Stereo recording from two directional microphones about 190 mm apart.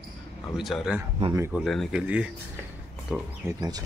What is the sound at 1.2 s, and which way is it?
Speech, 20° right (ahead or behind).